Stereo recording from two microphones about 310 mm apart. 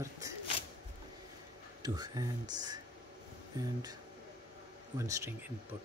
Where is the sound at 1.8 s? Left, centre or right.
Centre.